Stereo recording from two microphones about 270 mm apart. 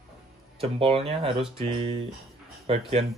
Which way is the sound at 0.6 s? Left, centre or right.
Right.